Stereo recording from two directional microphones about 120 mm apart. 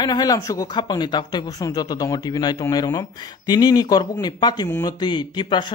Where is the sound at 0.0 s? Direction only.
35° left (ahead or behind).